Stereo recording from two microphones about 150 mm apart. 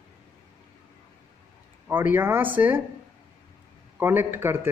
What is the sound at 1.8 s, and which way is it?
Speech, 10° right (ahead or behind).